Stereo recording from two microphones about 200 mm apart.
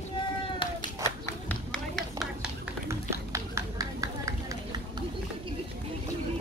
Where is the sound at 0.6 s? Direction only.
20° left (ahead or behind).